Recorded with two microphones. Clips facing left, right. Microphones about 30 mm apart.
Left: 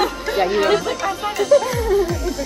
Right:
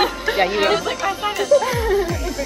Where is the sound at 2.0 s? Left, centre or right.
Centre.